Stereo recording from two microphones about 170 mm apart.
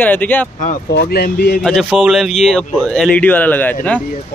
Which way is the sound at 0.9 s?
70° left (ahead or behind).